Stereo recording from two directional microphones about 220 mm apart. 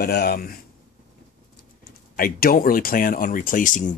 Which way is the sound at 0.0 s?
45° left (ahead or behind).